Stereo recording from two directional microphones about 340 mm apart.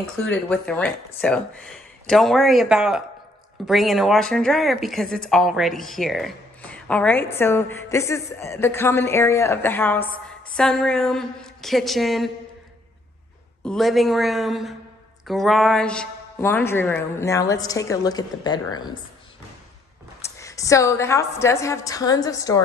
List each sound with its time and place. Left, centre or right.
0.3 s a woman's voice: centre
13.7 s a woman's voice: centre
20.3 s speech: centre